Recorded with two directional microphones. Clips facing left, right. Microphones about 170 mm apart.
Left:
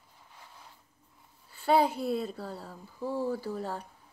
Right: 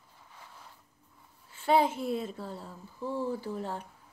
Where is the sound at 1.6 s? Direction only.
40° left (ahead or behind).